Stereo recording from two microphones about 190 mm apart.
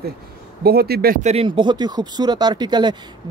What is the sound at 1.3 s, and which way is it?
Speech, 30° right (ahead or behind).